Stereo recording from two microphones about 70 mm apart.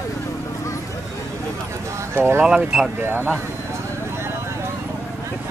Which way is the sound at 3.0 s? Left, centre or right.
Right.